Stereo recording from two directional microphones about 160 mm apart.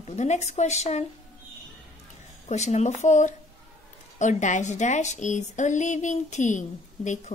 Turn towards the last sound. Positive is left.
turn(degrees=50)  # may be behind; listen again after turning